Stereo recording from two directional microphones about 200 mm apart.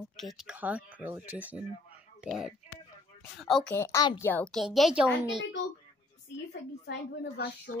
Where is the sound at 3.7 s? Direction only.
15° left (ahead or behind).